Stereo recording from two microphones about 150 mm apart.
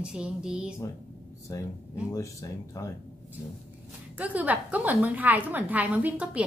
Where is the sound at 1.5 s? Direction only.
20° left (ahead or behind).